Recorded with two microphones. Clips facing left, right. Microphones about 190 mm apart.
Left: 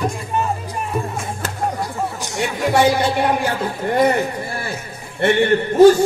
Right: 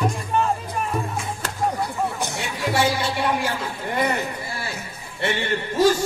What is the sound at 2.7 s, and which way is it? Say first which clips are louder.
Speech: left 6 dB; 60° left (ahead or behind).